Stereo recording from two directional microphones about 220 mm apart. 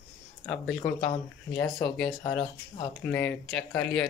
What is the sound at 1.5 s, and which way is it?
Speech, 10° left (ahead or behind).